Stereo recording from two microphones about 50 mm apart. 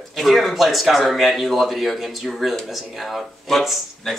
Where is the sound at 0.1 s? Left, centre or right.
Centre.